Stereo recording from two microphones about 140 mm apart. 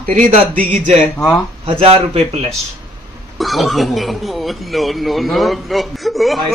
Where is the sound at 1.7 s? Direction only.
45° right (ahead or behind).